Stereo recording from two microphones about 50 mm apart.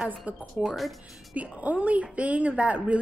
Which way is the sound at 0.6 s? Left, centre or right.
Centre.